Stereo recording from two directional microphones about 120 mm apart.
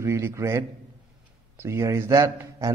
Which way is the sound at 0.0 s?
25° right (ahead or behind).